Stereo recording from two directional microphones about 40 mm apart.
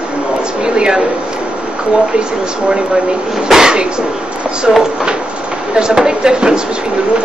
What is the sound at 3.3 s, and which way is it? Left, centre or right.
Speech, centre.